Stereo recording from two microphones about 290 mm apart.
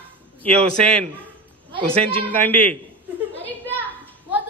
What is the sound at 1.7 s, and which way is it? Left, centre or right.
Speech, centre.